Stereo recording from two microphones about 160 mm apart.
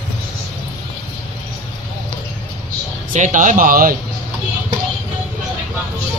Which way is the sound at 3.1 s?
50° right (ahead or behind).